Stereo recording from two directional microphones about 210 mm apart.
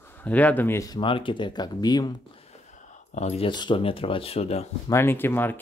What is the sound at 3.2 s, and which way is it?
Speech, 30° left (ahead or behind).